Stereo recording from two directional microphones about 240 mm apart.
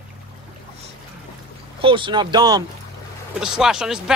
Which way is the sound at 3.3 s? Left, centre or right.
Centre.